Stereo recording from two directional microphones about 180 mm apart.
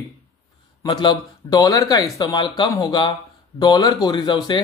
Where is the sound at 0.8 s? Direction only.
25° left (ahead or behind).